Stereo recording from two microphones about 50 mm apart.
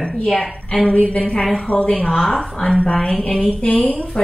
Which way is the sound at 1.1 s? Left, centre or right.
Left.